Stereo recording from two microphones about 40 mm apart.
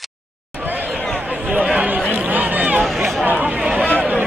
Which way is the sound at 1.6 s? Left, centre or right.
Right.